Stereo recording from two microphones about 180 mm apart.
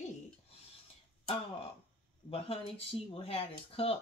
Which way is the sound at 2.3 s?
30° left (ahead or behind).